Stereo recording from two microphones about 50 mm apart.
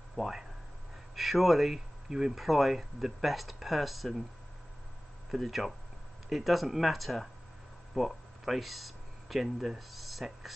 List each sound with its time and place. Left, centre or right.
0.1 s speech: centre
5.3 s speech: centre